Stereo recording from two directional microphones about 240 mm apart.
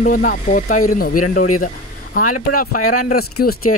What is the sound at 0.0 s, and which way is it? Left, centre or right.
Speech, left.